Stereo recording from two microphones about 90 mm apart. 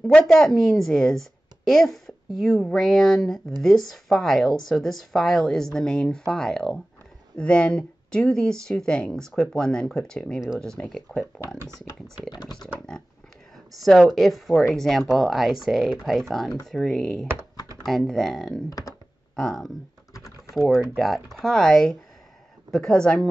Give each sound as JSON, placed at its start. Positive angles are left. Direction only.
{"t": 0.0, "sound": "a woman's voice", "side_deg": 5}
{"t": 12.3, "sound": "speech", "side_deg": 50}
{"t": 13.7, "sound": "a woman's voice", "side_deg": 0}
{"t": 18.7, "sound": "speech", "side_deg": 40}
{"t": 19.3, "sound": "a woman's voice", "side_deg": 5}